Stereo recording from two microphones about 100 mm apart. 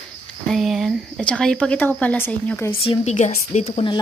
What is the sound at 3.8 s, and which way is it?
Speech, 60° left (ahead or behind).